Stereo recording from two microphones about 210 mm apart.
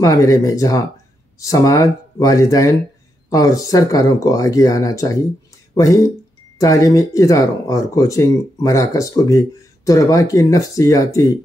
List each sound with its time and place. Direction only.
0.0 s speech: 15° left (ahead or behind)